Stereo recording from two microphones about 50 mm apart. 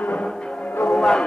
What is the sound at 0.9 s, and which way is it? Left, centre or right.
Music, centre.